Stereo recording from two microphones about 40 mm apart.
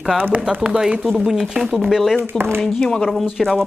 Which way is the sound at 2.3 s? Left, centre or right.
Right.